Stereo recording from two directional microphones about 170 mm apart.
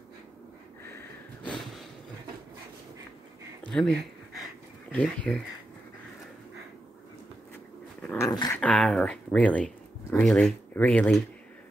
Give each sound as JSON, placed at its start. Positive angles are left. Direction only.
{"t": 0.9, "sound": "snort", "side_deg": 5}
{"t": 3.7, "sound": "speech", "side_deg": 5}
{"t": 8.2, "sound": "dog", "side_deg": 20}
{"t": 8.5, "sound": "speech", "side_deg": 5}